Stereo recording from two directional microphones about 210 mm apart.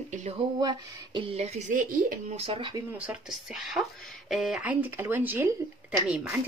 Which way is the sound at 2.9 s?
5° right (ahead or behind).